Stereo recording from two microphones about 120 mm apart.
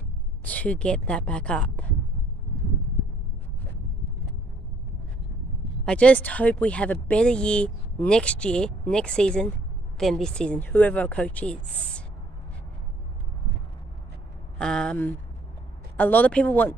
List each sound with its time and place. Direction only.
0.4 s speech: 10° left (ahead or behind)
5.9 s speech: 10° left (ahead or behind)
14.6 s speech: 5° left (ahead or behind)